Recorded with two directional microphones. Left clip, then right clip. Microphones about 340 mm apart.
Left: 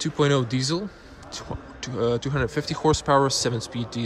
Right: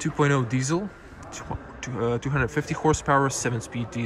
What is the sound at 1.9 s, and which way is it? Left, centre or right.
Speech, centre.